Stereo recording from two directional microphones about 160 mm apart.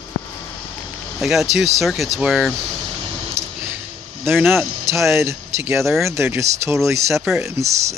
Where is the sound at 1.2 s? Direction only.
Centre (ahead or behind).